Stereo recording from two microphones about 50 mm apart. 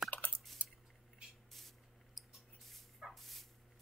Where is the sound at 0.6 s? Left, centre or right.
Right.